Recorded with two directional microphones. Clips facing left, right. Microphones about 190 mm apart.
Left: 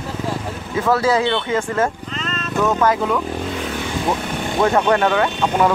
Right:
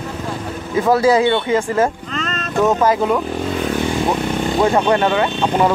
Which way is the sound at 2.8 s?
25° right (ahead or behind).